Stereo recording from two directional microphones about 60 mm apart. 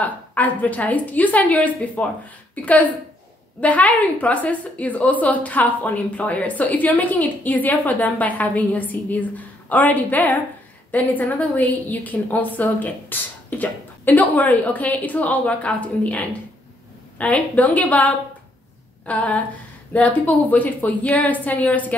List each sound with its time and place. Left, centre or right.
0.0 s a woman's voice: left